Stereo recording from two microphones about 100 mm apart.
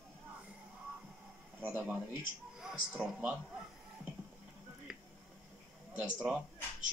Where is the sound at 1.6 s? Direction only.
20° right (ahead or behind).